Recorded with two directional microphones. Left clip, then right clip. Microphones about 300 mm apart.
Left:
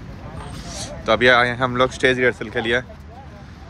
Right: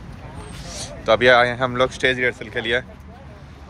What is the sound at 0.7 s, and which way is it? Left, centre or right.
Speech, centre.